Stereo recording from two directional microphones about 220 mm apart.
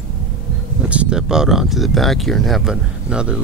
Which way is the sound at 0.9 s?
5° right (ahead or behind).